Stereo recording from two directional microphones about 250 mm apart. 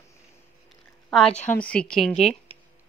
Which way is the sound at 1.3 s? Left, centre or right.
Left.